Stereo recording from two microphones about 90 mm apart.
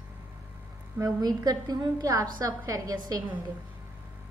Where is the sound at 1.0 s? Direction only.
45° right (ahead or behind).